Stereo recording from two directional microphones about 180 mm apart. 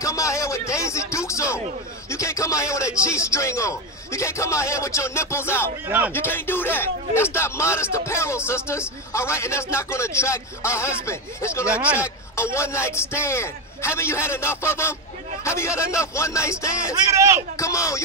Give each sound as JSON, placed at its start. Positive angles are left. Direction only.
{"t": 0.0, "sound": "a sound", "side_deg": 15}
{"t": 0.7, "sound": "a man's voice", "side_deg": 15}
{"t": 5.9, "sound": "a man's voice", "side_deg": -10}
{"t": 6.1, "sound": "a man's voice", "side_deg": 10}
{"t": 11.7, "sound": "a man's voice", "side_deg": -5}
{"t": 12.4, "sound": "a man's voice", "side_deg": 15}
{"t": 16.9, "sound": "a man's voice", "side_deg": -15}
{"t": 17.6, "sound": "a man's voice", "side_deg": 15}